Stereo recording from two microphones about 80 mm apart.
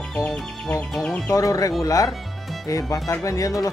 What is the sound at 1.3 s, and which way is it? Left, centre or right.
Speech, left.